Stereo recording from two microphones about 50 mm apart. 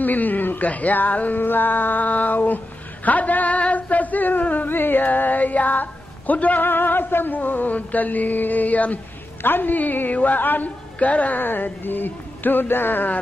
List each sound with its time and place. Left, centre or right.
0.0 s a woman's voice: left
6.6 s a woman's voice: left
9.4 s a woman's voice: left